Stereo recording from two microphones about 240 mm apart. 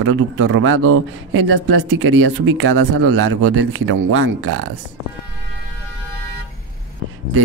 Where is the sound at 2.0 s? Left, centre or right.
Right.